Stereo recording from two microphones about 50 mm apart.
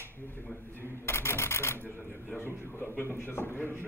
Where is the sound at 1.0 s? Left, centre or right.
Left.